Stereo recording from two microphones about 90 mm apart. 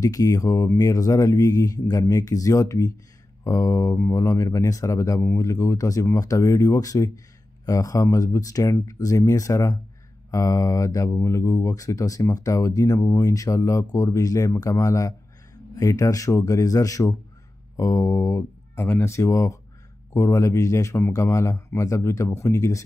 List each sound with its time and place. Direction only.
0.0 s speech: 40° left (ahead or behind)
18.8 s speech: 30° left (ahead or behind)